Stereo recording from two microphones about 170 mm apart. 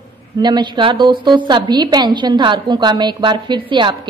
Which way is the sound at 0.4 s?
25° right (ahead or behind).